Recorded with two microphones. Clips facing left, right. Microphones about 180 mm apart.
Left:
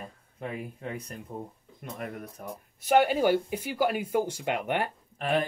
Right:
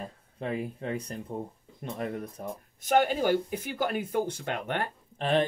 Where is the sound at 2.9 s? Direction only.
10° left (ahead or behind).